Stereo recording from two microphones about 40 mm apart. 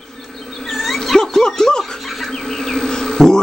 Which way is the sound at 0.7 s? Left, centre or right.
Centre.